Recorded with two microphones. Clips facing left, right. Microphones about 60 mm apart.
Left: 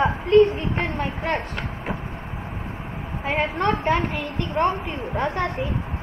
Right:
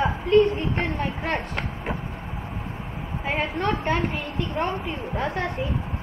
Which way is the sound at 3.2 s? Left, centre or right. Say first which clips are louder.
Left 3 dB; centre.